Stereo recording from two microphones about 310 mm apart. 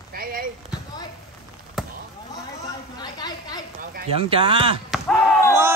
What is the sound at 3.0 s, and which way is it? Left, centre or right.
Chatter, centre.